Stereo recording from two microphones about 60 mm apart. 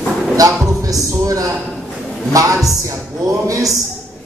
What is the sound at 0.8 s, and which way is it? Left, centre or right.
A man's voice, right.